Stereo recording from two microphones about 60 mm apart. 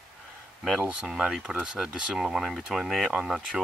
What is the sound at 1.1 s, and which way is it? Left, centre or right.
Speech, centre.